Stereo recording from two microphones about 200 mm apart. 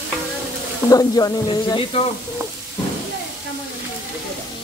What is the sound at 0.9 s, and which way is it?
Speech, 15° left (ahead or behind).